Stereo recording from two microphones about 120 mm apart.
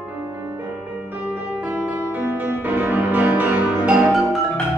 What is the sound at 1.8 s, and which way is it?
Music, 15° right (ahead or behind).